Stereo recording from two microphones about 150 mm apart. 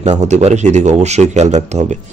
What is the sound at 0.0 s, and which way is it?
A man's voice, 50° right (ahead or behind).